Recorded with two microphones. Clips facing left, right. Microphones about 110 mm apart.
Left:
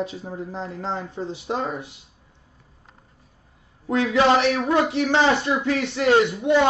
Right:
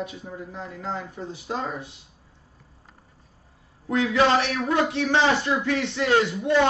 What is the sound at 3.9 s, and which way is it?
Speech, 20° left (ahead or behind).